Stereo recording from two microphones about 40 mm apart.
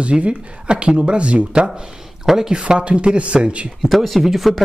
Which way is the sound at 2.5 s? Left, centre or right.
Right.